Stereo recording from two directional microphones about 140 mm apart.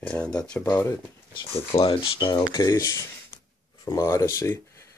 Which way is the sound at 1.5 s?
40° left (ahead or behind).